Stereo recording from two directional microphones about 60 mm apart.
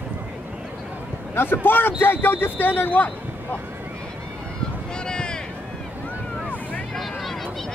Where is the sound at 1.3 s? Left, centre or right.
Left.